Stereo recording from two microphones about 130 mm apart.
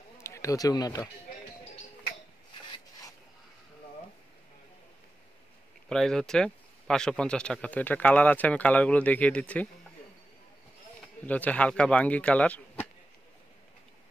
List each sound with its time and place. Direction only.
0.2 s speech: 25° left (ahead or behind)
5.9 s speech: 5° left (ahead or behind)
11.2 s speech: 10° left (ahead or behind)